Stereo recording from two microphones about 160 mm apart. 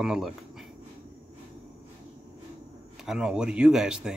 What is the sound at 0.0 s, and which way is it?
Speech, centre (ahead or behind).